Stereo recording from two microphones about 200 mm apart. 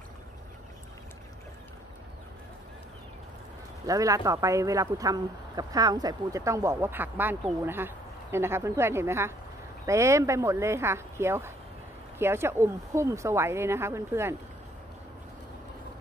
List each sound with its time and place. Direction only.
3.8 s speech: 15° right (ahead or behind)